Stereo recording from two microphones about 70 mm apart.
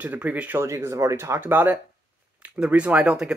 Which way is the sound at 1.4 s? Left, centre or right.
Right.